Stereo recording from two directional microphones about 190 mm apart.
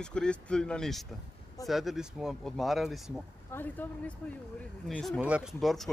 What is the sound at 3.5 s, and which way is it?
Speech, 10° left (ahead or behind).